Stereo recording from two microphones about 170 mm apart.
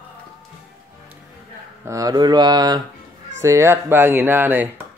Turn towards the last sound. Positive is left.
turn(degrees=-10)  # may be behind; listen again after turning